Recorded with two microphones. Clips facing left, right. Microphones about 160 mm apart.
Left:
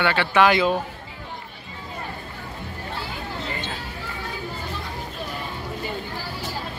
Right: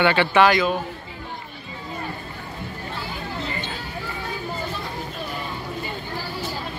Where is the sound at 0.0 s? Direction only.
Centre (ahead or behind).